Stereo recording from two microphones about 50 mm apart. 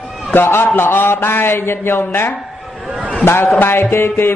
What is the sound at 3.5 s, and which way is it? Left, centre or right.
Speech, left.